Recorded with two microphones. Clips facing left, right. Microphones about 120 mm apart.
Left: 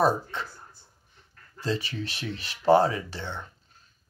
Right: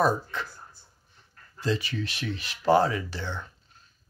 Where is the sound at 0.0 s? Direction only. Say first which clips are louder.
Left 1 dB; 30° left (ahead or behind).